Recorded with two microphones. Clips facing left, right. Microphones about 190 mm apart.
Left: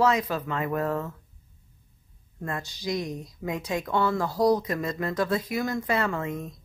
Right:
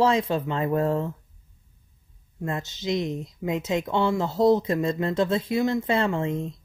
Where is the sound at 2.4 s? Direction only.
20° right (ahead or behind).